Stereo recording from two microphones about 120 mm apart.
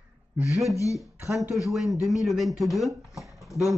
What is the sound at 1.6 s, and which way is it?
Speech, centre (ahead or behind).